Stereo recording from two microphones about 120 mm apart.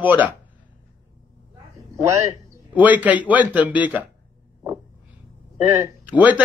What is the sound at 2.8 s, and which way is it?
A man's voice, 15° right (ahead or behind).